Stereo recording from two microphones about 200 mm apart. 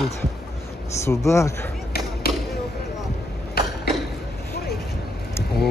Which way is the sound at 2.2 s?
50° left (ahead or behind).